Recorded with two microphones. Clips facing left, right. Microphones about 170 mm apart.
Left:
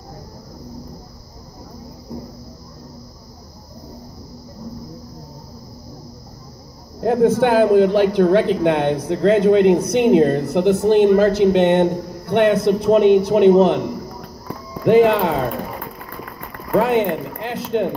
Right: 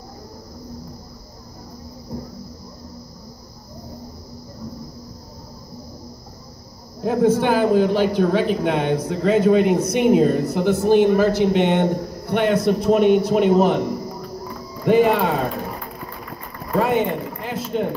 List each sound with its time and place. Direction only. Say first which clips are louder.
7.0 s a man's voice: left 3 dB; 70° left (ahead or behind)
16.7 s speech: left 3 dB; 75° left (ahead or behind)